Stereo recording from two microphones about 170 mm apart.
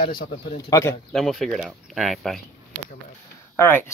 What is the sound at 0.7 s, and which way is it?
Speech, 20° left (ahead or behind).